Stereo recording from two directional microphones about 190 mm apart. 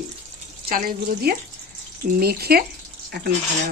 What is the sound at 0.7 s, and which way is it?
Speech, 50° right (ahead or behind).